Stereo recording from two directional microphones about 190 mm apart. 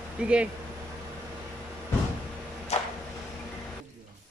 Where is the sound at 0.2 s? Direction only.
5° right (ahead or behind).